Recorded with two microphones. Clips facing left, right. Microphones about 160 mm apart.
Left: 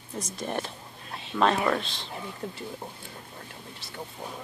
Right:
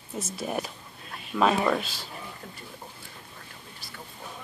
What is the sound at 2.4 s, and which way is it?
Speech, 25° left (ahead or behind).